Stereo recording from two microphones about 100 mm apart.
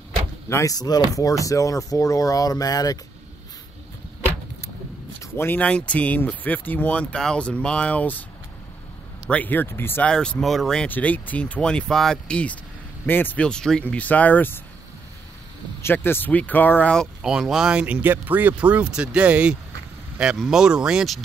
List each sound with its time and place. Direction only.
0.5 s speech: 30° left (ahead or behind)
0.7 s speech: 40° left (ahead or behind)
5.2 s speech: 20° left (ahead or behind)
9.3 s speech: 15° left (ahead or behind)
10.0 s speech: 10° left (ahead or behind)
10.9 s speech: 15° left (ahead or behind)
15.8 s speech: 20° left (ahead or behind)
17.2 s speech: 5° right (ahead or behind)